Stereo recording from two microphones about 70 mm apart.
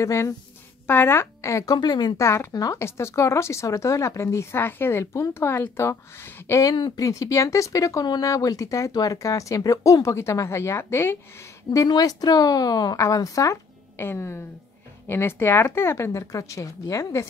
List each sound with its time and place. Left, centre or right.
0.0 s speech: left
0.8 s a woman's voice: left
1.7 s speech: left
2.1 s speech: left
2.5 s speech: left
2.8 s speech: left
6.6 s speech: left
8.0 s speech: left
8.3 s speech: left
11.9 s speech: left
13.0 s speech: left
13.9 s speech: left